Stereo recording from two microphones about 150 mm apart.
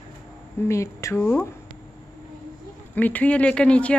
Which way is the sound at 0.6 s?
20° left (ahead or behind).